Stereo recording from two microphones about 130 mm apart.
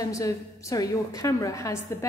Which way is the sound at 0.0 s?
25° left (ahead or behind).